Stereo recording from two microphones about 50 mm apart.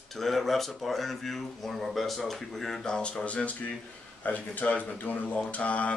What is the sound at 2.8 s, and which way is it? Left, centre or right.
Speech, centre.